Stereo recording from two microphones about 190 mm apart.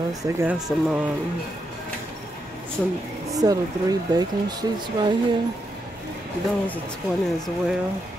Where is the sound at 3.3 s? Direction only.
20° right (ahead or behind).